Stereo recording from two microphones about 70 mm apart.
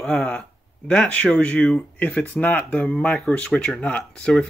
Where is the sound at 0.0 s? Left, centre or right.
Centre.